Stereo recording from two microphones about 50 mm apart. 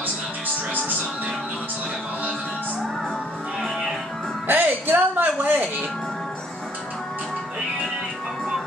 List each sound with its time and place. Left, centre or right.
4.5 s music: right